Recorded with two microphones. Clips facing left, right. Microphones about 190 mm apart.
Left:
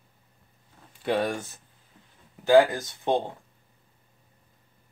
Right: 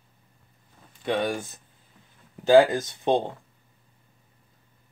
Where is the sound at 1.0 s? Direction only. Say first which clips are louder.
Even; 5° left (ahead or behind).